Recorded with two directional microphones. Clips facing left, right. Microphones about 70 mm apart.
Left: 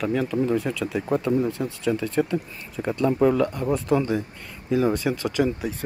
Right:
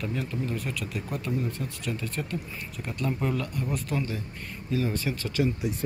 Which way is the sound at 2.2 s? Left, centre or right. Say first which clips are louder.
Left 11 dB; left.